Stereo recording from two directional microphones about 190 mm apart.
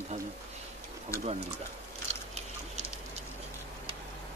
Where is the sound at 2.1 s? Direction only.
35° right (ahead or behind).